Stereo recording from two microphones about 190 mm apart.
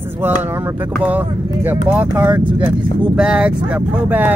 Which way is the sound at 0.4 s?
10° right (ahead or behind).